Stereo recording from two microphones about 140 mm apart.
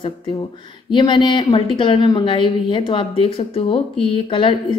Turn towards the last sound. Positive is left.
turn(degrees=35)  # may be behind; listen again after turning